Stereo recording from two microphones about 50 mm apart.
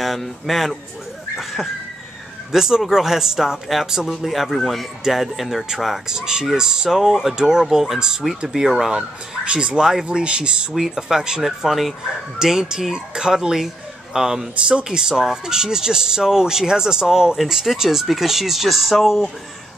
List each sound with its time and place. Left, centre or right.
0.0 s speech: centre
1.3 s a sound: centre
2.5 s speech: centre
6.0 s speech: centre
9.4 s speech: right
10.7 s speech: centre